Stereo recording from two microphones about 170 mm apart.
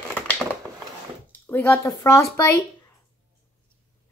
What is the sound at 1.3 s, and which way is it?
Speech, 10° left (ahead or behind).